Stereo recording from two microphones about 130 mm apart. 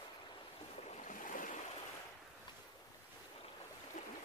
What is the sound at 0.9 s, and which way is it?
Boat, 80° left.